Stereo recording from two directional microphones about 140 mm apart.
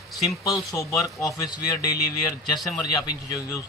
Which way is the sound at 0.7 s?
20° left (ahead or behind).